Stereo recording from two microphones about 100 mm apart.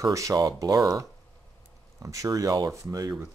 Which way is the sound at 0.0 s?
35° right (ahead or behind).